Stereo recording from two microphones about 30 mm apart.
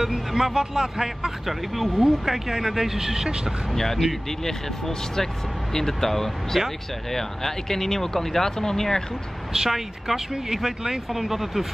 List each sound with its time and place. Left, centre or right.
0.0 s speech: centre
3.7 s speech: centre
9.5 s speech: centre